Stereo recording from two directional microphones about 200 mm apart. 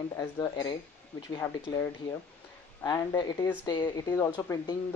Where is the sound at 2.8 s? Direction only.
20° left (ahead or behind).